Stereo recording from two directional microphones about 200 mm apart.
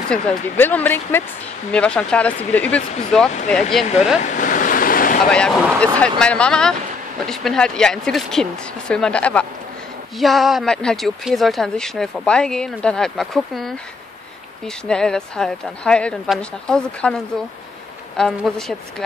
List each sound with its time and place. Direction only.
0.1 s speech: 5° left (ahead or behind)
4.2 s waves: 40° left (ahead or behind)
5.2 s speech: 5° left (ahead or behind)
14.9 s speech: 5° left (ahead or behind)
18.1 s speech: centre (ahead or behind)